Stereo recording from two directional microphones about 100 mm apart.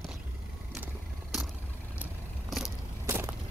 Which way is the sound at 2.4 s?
5° right (ahead or behind).